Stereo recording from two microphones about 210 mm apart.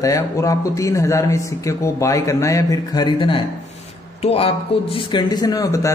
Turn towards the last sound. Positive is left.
turn(degrees=15)  # may be behind; listen again after turning